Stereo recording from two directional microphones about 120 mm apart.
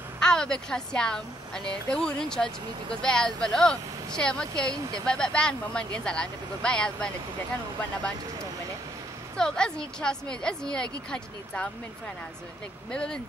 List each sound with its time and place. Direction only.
0.2 s a woman's voice: 5° left (ahead or behind)
9.4 s a woman's voice: 5° left (ahead or behind)
12.9 s a woman's voice: 10° left (ahead or behind)